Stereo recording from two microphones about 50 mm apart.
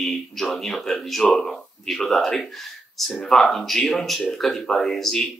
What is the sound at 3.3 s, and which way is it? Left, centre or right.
Speech, centre.